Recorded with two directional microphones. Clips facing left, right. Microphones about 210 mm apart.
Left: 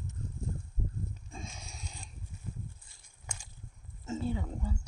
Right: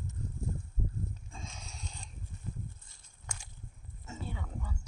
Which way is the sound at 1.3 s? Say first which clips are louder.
Left 2 dB; 10° left (ahead or behind).